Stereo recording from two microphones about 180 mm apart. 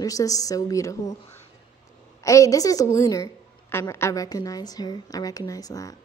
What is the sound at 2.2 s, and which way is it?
A woman's voice, 15° left (ahead or behind).